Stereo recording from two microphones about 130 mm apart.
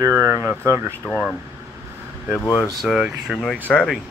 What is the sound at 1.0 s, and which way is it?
Speech, centre (ahead or behind).